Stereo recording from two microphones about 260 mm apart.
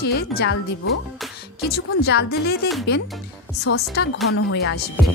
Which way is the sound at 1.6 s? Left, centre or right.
Left.